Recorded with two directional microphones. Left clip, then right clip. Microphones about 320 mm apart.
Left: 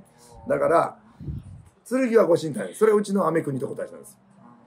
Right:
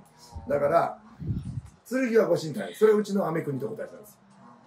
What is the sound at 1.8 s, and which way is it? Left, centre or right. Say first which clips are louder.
Speech: left 4 dB; centre.